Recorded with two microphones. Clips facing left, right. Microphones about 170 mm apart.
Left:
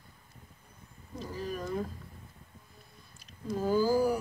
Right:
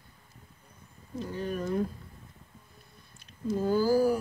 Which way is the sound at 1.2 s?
Centre (ahead or behind).